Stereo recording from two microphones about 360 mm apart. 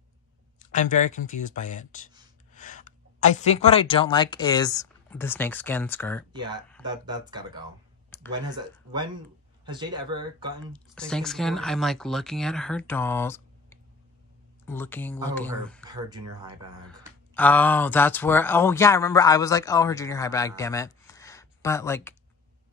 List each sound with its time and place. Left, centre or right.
0.6 s speech: centre
6.3 s speech: centre
10.7 s speech: centre
15.9 s speech: centre
17.3 s speech: centre